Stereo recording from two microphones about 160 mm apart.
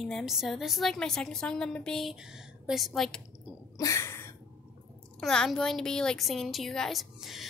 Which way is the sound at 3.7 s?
20° left (ahead or behind).